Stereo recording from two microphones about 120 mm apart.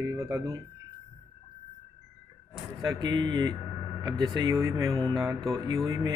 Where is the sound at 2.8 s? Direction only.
40° right (ahead or behind).